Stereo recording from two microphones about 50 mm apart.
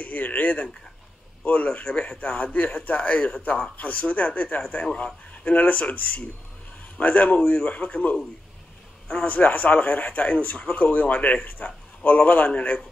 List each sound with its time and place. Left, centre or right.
0.0 s a man's voice: left